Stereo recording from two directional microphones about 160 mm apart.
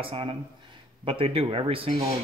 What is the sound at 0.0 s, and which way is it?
A man's voice, 35° right (ahead or behind).